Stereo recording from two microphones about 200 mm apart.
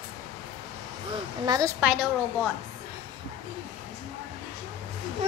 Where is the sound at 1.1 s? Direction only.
20° right (ahead or behind).